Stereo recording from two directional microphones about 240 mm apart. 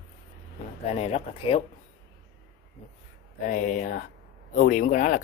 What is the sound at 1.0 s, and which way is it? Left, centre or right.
Speech, left.